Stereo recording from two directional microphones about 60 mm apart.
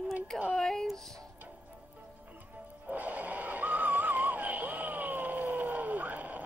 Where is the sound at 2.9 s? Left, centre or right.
Right.